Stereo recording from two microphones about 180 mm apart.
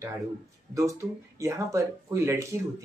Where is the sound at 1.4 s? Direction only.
15° right (ahead or behind).